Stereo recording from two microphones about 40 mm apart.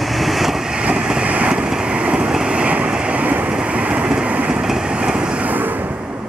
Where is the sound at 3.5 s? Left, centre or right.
Right.